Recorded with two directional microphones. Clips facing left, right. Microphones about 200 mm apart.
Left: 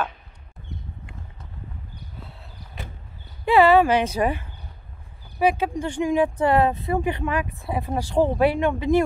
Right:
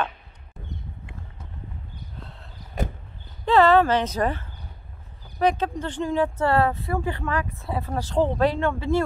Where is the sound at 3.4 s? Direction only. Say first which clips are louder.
Left 1 dB; 10° left (ahead or behind).